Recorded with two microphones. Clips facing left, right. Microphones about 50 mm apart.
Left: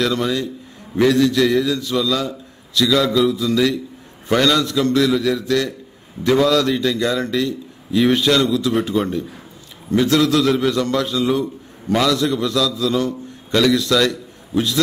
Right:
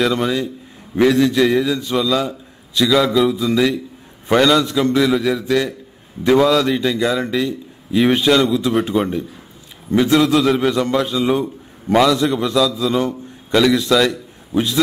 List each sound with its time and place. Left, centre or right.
0.0 s a man's voice: centre